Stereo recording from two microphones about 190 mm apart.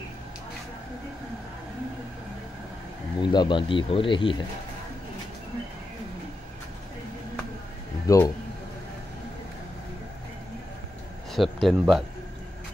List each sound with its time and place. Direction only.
3.2 s speech: 25° left (ahead or behind)
8.1 s speech: 20° left (ahead or behind)
11.3 s speech: centre (ahead or behind)